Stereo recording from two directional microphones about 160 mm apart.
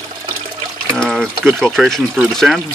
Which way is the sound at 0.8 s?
5° left (ahead or behind).